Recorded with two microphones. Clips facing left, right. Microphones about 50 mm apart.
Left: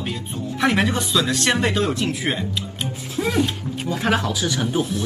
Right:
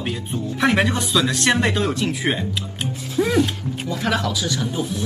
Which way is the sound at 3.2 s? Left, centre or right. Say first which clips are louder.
Right 3 dB; centre.